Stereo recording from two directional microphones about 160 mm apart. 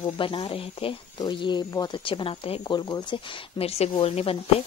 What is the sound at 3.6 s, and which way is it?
Speech, 40° left (ahead or behind).